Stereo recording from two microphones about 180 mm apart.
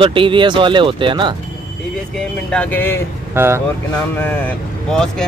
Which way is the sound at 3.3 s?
15° right (ahead or behind).